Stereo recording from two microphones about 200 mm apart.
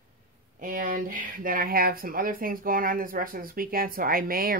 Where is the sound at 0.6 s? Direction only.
45° right (ahead or behind).